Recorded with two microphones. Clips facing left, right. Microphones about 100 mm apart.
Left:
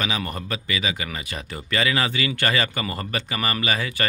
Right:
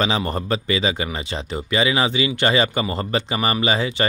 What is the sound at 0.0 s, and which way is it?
Speech, 30° right (ahead or behind).